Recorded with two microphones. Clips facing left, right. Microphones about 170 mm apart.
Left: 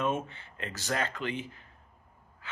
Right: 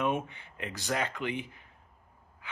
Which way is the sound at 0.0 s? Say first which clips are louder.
Even; 15° right (ahead or behind).